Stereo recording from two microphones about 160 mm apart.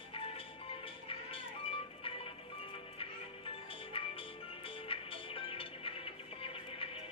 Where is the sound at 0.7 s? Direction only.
35° left (ahead or behind).